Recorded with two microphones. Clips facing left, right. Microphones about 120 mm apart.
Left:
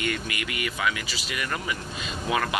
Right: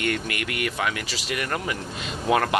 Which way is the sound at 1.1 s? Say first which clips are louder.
Right 3 dB; 70° right (ahead or behind).